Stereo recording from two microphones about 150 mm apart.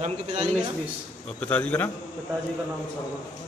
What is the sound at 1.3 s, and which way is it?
Speech, 10° left (ahead or behind).